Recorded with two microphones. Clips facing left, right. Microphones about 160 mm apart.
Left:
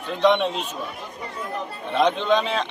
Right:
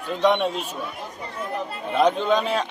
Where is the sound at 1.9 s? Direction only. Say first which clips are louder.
Even; 5° right (ahead or behind).